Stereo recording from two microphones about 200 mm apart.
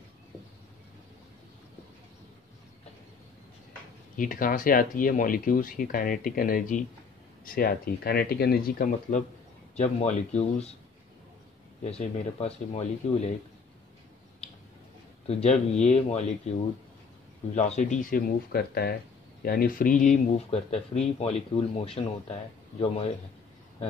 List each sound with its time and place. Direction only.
4.2 s speech: 45° left (ahead or behind)
11.8 s speech: 35° left (ahead or behind)
15.2 s speech: 30° left (ahead or behind)
17.6 s speech: 35° left (ahead or behind)